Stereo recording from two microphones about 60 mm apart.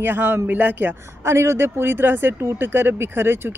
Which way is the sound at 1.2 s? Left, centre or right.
Right.